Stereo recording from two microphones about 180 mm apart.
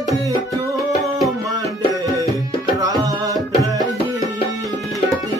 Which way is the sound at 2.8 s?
20° right (ahead or behind).